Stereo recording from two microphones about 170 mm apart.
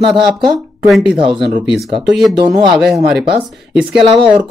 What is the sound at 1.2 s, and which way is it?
Speech, 30° right (ahead or behind).